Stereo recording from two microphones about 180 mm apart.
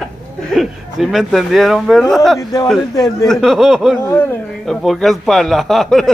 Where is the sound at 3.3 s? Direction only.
Centre (ahead or behind).